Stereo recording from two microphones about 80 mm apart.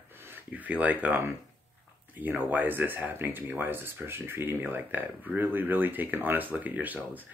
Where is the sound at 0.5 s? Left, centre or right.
Centre.